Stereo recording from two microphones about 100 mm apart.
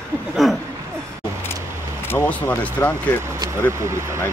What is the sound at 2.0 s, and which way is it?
Speech, 20° left (ahead or behind).